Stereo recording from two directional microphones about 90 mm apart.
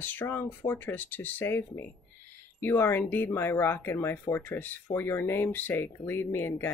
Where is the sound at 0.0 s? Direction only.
20° left (ahead or behind).